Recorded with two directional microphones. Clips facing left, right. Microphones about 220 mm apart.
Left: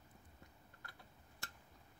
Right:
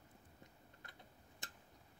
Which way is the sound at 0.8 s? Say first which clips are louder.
Left 2 dB; 20° right (ahead or behind).